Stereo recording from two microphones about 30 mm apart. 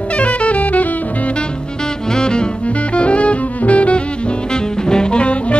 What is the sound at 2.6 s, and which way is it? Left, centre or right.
Music, left.